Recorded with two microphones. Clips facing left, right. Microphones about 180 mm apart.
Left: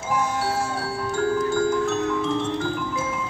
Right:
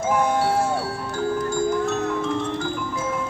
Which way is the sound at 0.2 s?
55° right (ahead or behind).